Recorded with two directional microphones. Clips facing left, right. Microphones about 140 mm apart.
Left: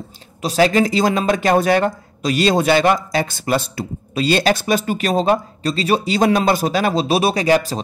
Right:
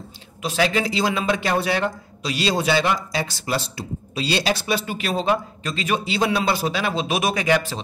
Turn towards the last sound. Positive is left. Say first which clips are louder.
# left 5 dB
turn(degrees=40)  # may be behind; listen again after turning